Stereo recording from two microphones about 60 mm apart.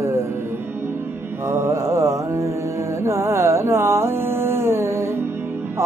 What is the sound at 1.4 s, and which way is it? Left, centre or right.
Mantra, right.